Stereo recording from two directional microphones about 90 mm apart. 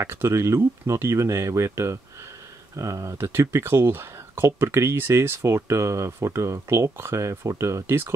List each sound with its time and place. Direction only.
0.0 s speech: 30° right (ahead or behind)